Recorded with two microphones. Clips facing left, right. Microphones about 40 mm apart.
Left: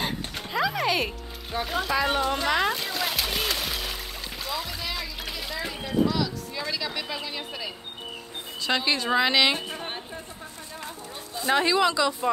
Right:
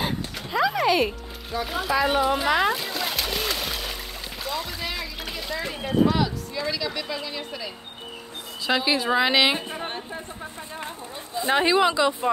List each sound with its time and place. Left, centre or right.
0.0 s music: centre
1.7 s splash: centre
6.0 s a sound: right
6.5 s a woman's voice: centre
8.6 s speech: centre
11.3 s speech: centre